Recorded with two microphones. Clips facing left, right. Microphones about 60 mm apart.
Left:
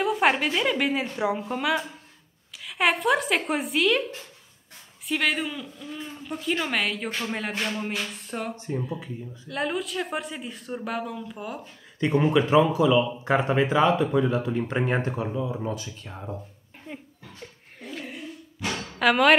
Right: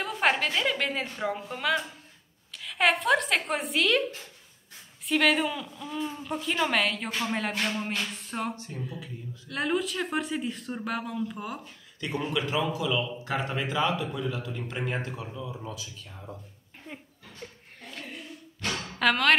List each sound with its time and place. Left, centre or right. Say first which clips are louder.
0.0 s a woman's voice: left 4 dB; centre
5.0 s speech: right 2 dB; centre
8.7 s a woman's voice: left 7 dB; centre
9.5 s speech: even; centre
12.3 s speech: left 8 dB; left
16.8 s a sound: left 4 dB; centre